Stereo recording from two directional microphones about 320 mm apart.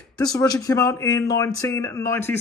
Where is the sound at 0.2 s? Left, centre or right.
Centre.